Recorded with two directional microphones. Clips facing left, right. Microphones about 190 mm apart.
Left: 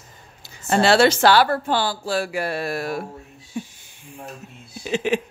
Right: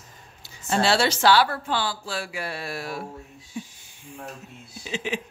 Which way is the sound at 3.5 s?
65° left (ahead or behind).